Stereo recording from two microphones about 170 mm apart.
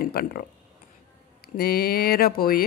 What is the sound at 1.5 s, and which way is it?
Speech, 65° left (ahead or behind).